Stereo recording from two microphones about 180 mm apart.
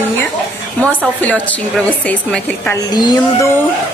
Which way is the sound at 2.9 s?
20° left (ahead or behind).